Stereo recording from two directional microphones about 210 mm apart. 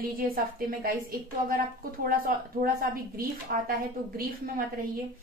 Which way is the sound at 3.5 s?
45° right (ahead or behind).